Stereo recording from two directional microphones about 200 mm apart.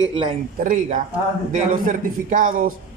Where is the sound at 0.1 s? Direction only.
25° right (ahead or behind).